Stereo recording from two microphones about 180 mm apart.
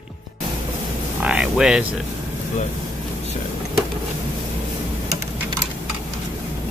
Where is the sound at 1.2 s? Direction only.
5° right (ahead or behind).